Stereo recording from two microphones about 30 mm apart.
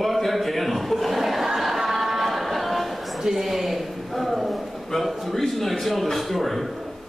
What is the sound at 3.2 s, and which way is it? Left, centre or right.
Speech, centre.